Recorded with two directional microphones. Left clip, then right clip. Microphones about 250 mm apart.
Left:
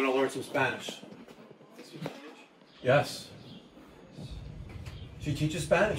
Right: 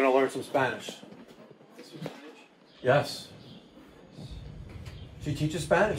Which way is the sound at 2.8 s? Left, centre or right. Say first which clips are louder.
Right 1 dB; centre.